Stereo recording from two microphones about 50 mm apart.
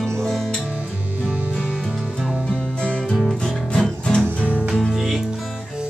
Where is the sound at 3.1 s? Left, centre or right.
Centre.